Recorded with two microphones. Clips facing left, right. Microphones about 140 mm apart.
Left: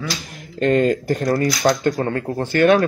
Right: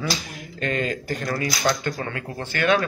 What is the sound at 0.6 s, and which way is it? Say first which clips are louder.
A man's voice: left 10 dB; 50° left (ahead or behind).